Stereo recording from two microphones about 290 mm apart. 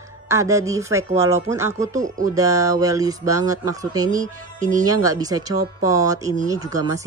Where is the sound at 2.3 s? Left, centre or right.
Centre.